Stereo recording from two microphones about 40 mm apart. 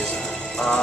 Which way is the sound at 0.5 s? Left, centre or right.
Left.